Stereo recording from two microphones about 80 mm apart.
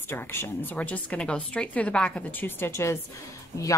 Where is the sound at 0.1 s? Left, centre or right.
Left.